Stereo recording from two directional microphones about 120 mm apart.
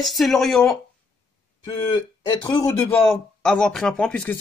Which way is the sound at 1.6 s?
35° left (ahead or behind).